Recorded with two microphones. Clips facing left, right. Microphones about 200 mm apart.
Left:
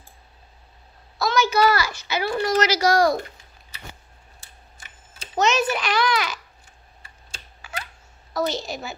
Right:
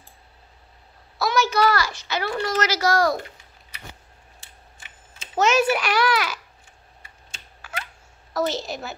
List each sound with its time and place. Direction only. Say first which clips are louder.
1.1 s a sound: even; 5° right (ahead or behind)
1.5 s a child's voice: left 1 dB; 5° left (ahead or behind)
5.3 s a child's voice: right 2 dB; 5° right (ahead or behind)
7.0 s typing: left 3 dB; 35° left (ahead or behind)
8.3 s a woman's voice: even; centre (ahead or behind)